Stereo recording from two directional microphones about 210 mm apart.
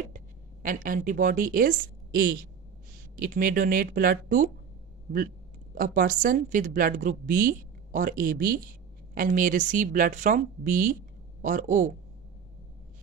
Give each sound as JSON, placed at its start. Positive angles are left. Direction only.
{"t": 0.1, "sound": "a woman's voice", "side_deg": -40}
{"t": 5.8, "sound": "a woman's voice", "side_deg": -40}